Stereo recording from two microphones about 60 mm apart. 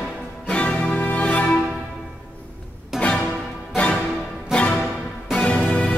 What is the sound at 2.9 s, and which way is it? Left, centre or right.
Music, centre.